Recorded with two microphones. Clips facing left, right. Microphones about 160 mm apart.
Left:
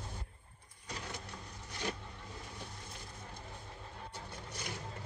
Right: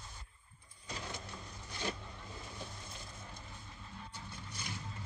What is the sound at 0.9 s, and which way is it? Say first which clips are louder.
Vehicle: even; 30° right (ahead or behind).